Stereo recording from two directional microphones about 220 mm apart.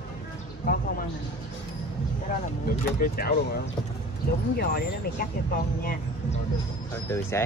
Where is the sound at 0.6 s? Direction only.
40° left (ahead or behind).